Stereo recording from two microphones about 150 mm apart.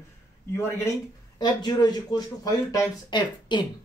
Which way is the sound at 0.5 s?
20° left (ahead or behind).